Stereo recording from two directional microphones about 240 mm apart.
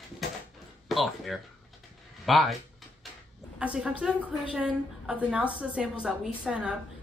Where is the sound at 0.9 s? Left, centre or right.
Centre.